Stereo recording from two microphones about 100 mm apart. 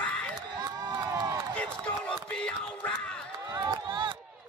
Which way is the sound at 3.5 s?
50° right (ahead or behind).